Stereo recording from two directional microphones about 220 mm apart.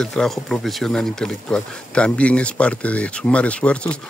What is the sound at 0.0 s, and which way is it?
Speech, centre (ahead or behind).